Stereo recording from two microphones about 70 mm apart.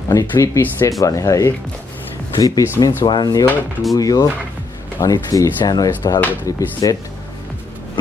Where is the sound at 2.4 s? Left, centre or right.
Left.